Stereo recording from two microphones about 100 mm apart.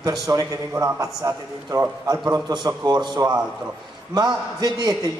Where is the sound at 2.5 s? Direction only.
45° right (ahead or behind).